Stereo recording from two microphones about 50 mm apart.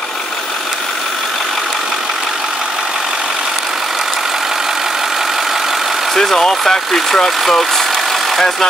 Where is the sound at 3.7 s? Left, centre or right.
Centre.